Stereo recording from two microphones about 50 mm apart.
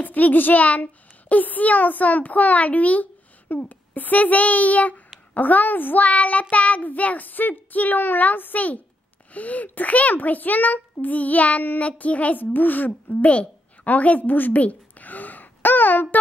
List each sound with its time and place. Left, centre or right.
0.0 s a child's voice: left
13.1 s a woman's voice: left